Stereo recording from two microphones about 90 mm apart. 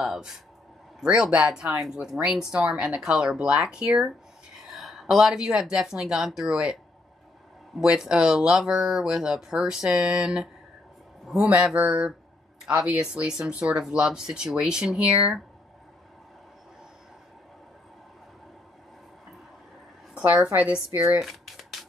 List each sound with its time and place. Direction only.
0.0 s speech: 5° right (ahead or behind)
7.8 s speech: 10° right (ahead or behind)
20.2 s a woman's voice: 20° right (ahead or behind)
20.6 s speech: 10° right (ahead or behind)